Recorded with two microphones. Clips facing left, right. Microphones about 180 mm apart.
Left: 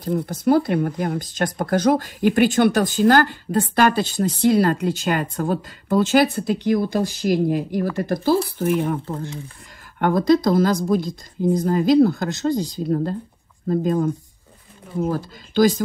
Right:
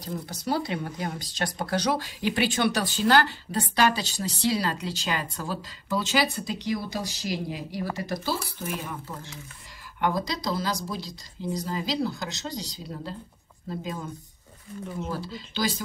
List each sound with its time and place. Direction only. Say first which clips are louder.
0.3 s speech: left 10 dB; 50° left (ahead or behind)